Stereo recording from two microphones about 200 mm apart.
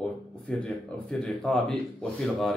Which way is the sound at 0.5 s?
5° left (ahead or behind).